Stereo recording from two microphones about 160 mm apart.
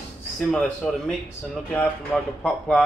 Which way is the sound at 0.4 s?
5° left (ahead or behind).